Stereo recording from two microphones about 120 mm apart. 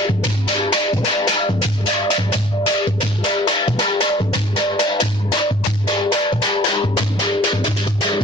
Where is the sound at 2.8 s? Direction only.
45° left (ahead or behind).